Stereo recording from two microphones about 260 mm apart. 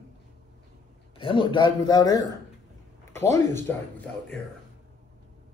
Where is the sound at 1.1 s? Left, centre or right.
Centre.